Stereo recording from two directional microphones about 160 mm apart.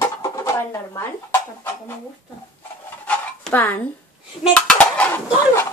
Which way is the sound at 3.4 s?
10° left (ahead or behind).